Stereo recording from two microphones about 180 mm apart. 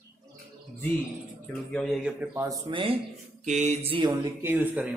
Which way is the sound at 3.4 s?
40° right (ahead or behind).